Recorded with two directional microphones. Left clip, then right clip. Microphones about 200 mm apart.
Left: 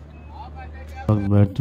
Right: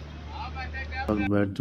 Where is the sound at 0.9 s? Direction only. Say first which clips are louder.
Left 3 dB; 50° left (ahead or behind).